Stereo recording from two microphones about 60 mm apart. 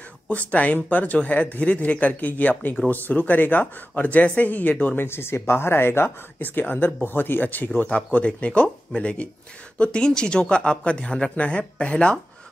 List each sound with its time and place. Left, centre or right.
0.3 s speech: left
5.0 s speech: left; by 12.2 s centre